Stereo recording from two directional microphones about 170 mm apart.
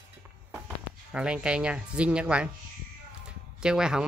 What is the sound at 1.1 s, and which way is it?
Speech, 5° right (ahead or behind).